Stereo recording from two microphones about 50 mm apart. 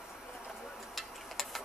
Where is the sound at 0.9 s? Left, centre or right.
Centre.